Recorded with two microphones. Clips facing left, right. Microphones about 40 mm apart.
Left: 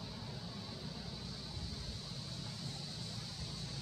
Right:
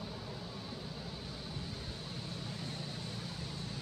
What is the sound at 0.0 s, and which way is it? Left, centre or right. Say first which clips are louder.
Vehicle: right 3 dB; centre.